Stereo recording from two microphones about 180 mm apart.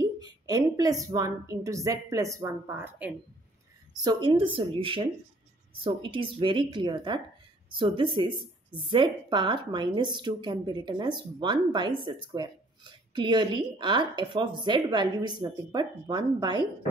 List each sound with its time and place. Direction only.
0.2 s a woman's voice: 20° right (ahead or behind)
3.9 s speech: 20° right (ahead or behind)